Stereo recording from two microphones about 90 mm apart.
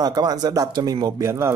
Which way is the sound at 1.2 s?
30° right (ahead or behind).